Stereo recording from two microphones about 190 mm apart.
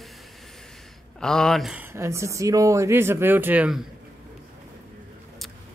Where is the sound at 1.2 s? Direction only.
5° left (ahead or behind).